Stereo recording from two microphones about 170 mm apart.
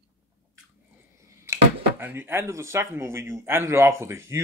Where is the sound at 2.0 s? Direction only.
10° right (ahead or behind).